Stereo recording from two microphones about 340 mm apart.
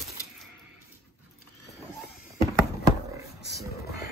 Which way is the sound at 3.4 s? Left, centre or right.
Left.